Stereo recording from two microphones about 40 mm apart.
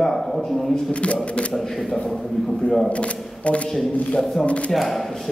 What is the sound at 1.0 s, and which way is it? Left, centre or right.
Speech, left.